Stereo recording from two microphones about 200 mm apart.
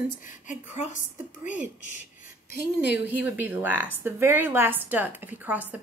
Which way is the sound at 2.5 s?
50° left (ahead or behind).